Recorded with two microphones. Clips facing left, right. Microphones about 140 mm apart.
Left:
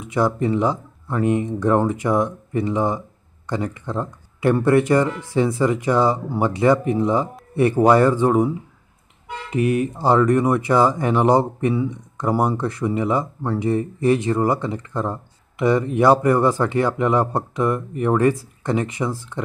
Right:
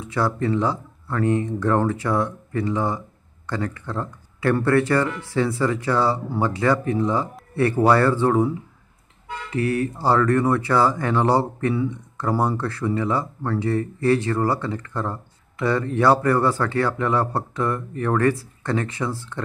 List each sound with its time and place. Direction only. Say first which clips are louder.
0.0 s speech: left 3 dB; 20° left (ahead or behind)
9.5 s speech: left 3 dB; 20° left (ahead or behind)